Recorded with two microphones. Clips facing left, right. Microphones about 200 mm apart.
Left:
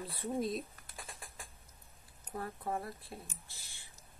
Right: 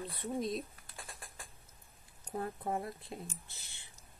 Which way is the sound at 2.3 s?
15° right (ahead or behind).